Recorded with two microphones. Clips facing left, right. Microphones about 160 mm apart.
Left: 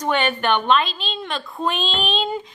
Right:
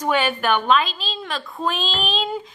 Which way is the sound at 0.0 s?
5° right (ahead or behind).